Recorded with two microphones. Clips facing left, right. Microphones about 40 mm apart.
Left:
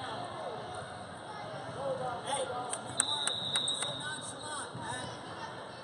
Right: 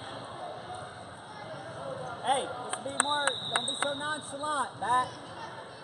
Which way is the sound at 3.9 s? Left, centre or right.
Right.